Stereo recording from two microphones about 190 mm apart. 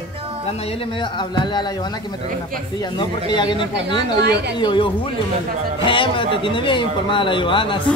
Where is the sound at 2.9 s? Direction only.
25° left (ahead or behind).